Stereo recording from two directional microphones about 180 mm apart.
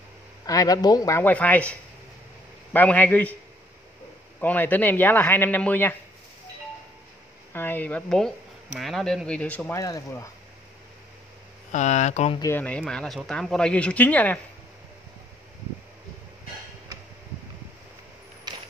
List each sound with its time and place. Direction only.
0.5 s speech: 20° left (ahead or behind)
4.4 s speech: 10° left (ahead or behind)
7.5 s speech: 10° left (ahead or behind)
9.8 s speech: 20° left (ahead or behind)
11.7 s speech: 40° left (ahead or behind)
12.4 s speech: 15° left (ahead or behind)